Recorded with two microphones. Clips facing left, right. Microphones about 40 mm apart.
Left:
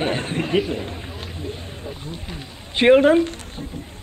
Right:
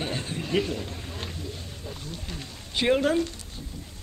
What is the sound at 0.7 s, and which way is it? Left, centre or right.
Speech, left.